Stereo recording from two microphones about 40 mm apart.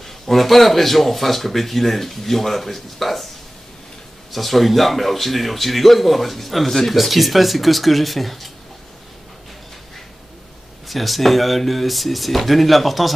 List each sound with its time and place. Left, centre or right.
0.0 s a man's voice: centre
4.3 s a man's voice: centre
10.9 s a man's voice: centre